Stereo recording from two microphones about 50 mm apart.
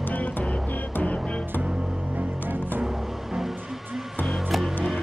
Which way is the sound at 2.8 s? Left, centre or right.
Centre.